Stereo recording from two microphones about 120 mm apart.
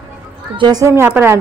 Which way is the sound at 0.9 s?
20° right (ahead or behind).